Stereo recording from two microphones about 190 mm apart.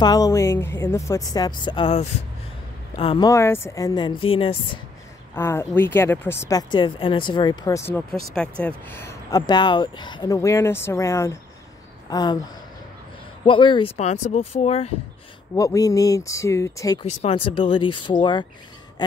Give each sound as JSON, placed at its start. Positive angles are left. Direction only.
{"t": 0.0, "sound": "a woman's voice", "side_deg": 20}
{"t": 3.3, "sound": "a woman's voice", "side_deg": 15}
{"t": 5.3, "sound": "a woman's voice", "side_deg": 10}
{"t": 13.5, "sound": "speech", "side_deg": 25}
{"t": 15.5, "sound": "speech", "side_deg": 15}
{"t": 17.0, "sound": "a woman's voice", "side_deg": 30}